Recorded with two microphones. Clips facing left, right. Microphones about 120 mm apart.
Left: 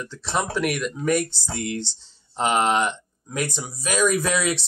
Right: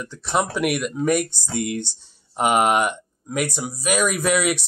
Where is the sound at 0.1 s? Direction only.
15° right (ahead or behind).